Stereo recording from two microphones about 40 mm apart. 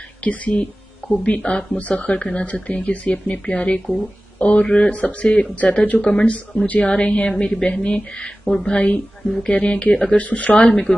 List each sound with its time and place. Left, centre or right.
0.2 s speech: left
8.6 s speech: left